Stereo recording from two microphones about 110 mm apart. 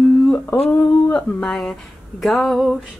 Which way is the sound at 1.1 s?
10° left (ahead or behind).